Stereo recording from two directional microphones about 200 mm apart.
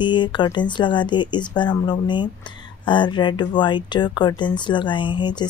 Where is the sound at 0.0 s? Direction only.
25° left (ahead or behind).